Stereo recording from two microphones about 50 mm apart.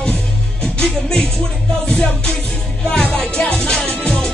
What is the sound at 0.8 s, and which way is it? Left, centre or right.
Music, centre.